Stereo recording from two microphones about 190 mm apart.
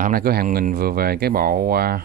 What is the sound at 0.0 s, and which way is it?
Speech, 50° right (ahead or behind).